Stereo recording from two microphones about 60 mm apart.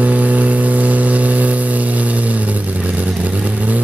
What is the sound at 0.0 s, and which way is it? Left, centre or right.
Vehicle, right.